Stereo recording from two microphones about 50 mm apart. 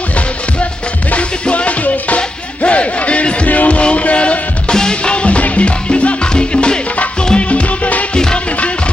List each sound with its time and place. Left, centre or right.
1.1 s music: left